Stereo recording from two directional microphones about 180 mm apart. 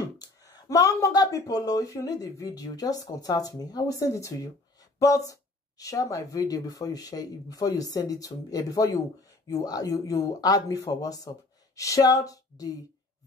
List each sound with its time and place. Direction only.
0.2 s speech: 20° left (ahead or behind)